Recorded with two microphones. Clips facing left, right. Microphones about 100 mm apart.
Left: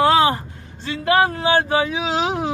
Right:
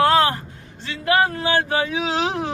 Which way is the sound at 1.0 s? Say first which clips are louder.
Left 2 dB; 25° left (ahead or behind).